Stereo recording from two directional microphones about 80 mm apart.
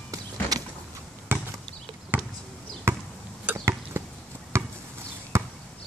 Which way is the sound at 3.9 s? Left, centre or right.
Right.